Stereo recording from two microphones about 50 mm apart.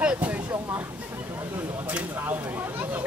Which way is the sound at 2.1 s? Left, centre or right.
Right.